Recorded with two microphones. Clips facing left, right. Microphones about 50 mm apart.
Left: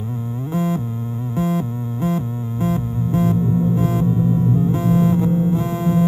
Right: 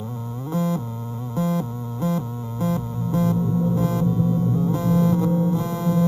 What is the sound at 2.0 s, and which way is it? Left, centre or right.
Music, left.